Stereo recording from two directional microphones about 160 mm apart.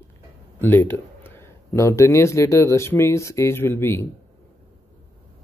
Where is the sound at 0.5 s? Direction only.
15° left (ahead or behind).